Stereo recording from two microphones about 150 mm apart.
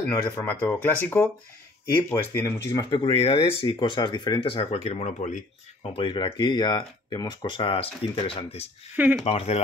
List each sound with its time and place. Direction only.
0.1 s speech: 15° left (ahead or behind)
2.3 s speech: 20° left (ahead or behind)
3.0 s speech: 40° left (ahead or behind)
5.8 s speech: 35° left (ahead or behind)
8.9 s speech: 10° right (ahead or behind)
9.2 s speech: 45° left (ahead or behind)